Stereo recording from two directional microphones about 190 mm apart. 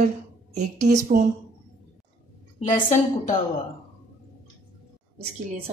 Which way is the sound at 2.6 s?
40° left (ahead or behind).